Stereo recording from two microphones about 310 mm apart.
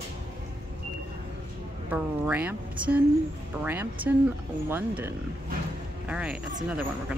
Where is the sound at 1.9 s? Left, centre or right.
Centre.